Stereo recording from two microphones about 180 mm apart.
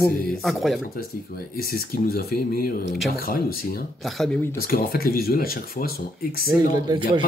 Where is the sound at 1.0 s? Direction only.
55° left (ahead or behind).